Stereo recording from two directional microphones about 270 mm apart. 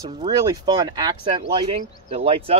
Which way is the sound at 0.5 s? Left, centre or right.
Centre.